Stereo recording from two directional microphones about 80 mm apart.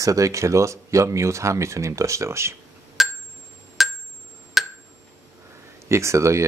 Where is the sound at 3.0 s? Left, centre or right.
Centre.